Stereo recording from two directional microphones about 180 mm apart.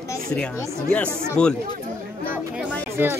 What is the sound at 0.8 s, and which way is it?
Speech, 5° left (ahead or behind).